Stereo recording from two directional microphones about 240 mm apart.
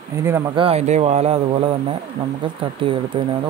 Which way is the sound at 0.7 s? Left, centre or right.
Right.